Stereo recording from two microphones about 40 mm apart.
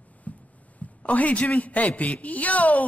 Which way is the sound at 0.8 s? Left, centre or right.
Left.